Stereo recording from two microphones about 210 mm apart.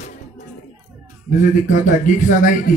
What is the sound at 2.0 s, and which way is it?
Speech, 40° left (ahead or behind).